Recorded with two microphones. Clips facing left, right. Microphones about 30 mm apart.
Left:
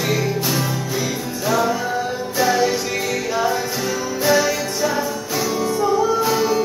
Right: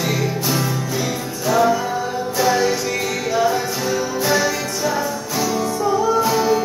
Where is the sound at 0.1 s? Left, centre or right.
Centre.